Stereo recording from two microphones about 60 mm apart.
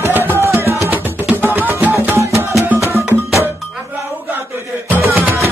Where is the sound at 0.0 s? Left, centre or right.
Right.